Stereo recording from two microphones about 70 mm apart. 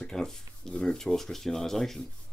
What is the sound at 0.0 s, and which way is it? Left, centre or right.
Speech, centre.